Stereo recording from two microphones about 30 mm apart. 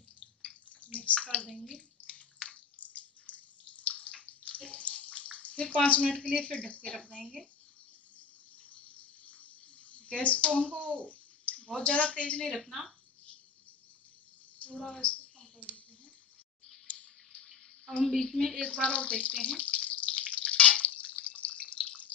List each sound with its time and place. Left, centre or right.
0.9 s bathtub: left
2.8 s drip: left
4.1 s bathtub: left
8.6 s a sound: left
12.6 s speech: centre
14.8 s a woman's voice: left
16.8 s a sound: left
18.2 s speech: centre
18.6 s speech: left
19.3 s bathtub: left